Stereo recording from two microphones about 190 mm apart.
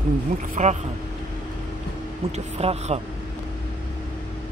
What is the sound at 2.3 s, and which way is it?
Speech, 35° right (ahead or behind).